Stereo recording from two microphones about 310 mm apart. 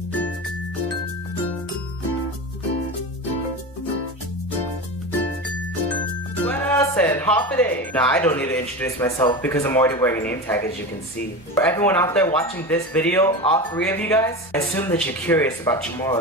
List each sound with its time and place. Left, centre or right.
6.4 s speech: centre
11.6 s speech: centre